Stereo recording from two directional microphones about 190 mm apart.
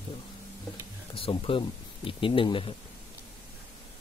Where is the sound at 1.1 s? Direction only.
30° left (ahead or behind).